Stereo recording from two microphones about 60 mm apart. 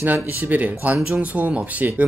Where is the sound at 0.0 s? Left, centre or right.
Right.